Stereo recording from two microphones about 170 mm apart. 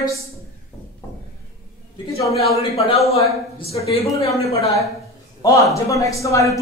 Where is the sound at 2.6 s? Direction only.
35° left (ahead or behind).